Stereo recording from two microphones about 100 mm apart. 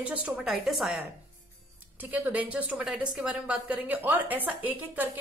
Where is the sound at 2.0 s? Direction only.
15° right (ahead or behind).